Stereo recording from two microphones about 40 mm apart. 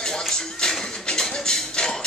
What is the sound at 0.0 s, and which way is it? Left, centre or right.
Music, centre.